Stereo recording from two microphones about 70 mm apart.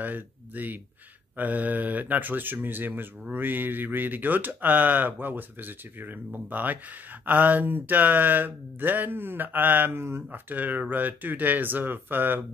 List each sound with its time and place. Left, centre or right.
0.0 s speech: right